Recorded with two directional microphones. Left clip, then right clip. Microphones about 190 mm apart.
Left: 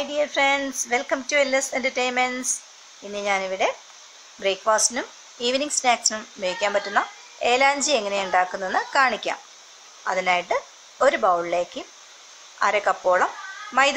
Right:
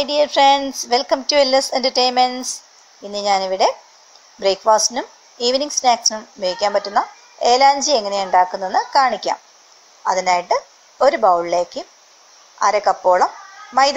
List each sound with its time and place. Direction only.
0.0 s a woman's voice: 25° right (ahead or behind); by 13.3 s 5° right (ahead or behind)